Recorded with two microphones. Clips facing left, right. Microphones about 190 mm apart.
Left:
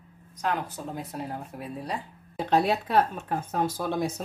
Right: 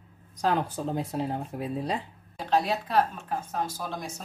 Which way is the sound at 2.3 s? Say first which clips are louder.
Left 3 dB; 60° left (ahead or behind).